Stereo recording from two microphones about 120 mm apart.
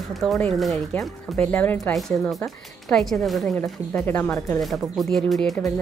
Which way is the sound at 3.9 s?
15° left (ahead or behind).